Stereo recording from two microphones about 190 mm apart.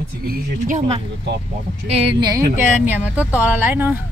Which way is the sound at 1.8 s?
30° right (ahead or behind).